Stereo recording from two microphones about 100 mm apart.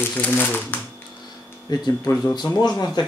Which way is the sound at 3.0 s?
45° left (ahead or behind).